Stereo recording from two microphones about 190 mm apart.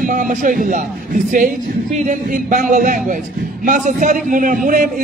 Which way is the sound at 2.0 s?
40° right (ahead or behind).